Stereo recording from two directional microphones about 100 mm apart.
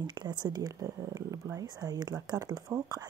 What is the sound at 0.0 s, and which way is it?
Speech, 45° right (ahead or behind).